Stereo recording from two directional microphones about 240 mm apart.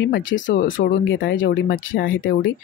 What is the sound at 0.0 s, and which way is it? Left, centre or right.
Speech, left.